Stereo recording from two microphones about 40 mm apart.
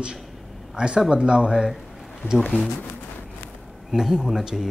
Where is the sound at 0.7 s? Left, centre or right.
Right.